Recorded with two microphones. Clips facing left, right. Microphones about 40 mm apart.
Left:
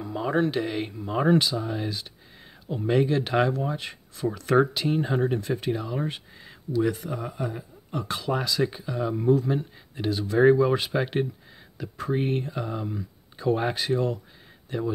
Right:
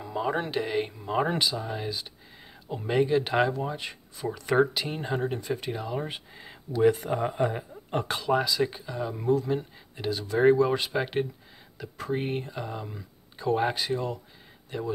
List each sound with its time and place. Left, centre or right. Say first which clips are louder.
0.0 s speech: left 4 dB; centre
6.9 s speech: right 5 dB; right
8.2 s speech: even; centre